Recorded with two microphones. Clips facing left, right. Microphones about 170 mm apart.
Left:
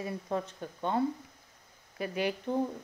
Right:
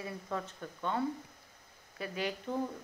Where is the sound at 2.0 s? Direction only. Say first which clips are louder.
Left 5 dB; 15° left (ahead or behind).